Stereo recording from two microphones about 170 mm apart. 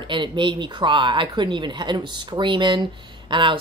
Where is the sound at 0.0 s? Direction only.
30° right (ahead or behind).